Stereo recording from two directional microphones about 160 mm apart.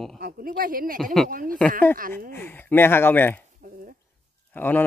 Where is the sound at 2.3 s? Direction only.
15° left (ahead or behind).